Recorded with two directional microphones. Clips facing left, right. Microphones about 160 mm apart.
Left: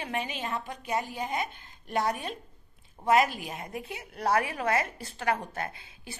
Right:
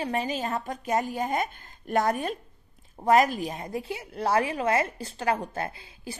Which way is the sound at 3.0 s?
40° right (ahead or behind).